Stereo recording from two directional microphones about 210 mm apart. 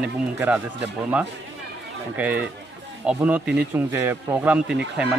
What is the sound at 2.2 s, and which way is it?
Speech, 5° right (ahead or behind).